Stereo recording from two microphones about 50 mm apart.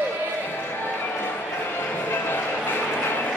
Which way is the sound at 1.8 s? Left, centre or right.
Left.